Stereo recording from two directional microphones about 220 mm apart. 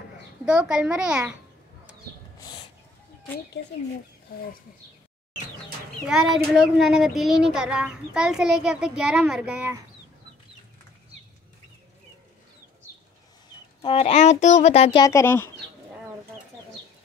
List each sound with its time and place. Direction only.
0.5 s a child's voice: 5° right (ahead or behind)
3.6 s speech: 50° left (ahead or behind)
6.0 s a child's voice: centre (ahead or behind)
13.8 s a child's voice: 30° left (ahead or behind)
15.0 s speech: 10° left (ahead or behind)